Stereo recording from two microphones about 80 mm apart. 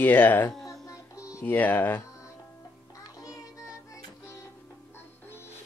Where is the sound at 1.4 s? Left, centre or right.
Left.